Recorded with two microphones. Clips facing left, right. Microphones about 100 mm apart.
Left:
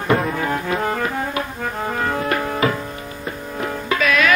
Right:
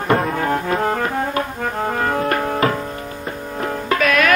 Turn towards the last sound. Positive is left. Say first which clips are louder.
# right 1 dB
turn(degrees=-50)  # may be behind; listen again after turning